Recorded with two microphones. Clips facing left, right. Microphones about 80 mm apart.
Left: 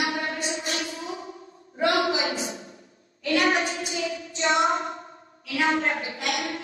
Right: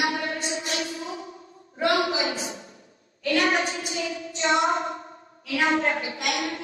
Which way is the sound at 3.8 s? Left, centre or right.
Right.